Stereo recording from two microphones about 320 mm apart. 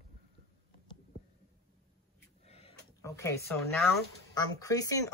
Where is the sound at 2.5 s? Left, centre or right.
Centre.